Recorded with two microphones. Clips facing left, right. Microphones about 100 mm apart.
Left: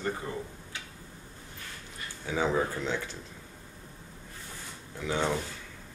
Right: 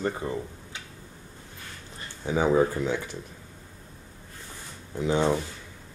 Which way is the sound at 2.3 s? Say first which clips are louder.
Right 6 dB; 15° right (ahead or behind).